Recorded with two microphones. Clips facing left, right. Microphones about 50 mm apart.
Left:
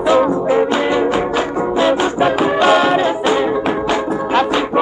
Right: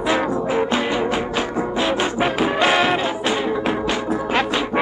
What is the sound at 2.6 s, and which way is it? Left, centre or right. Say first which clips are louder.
Music: left 5 dB; centre.